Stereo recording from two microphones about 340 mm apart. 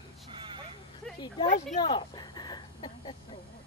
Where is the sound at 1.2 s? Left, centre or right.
Centre.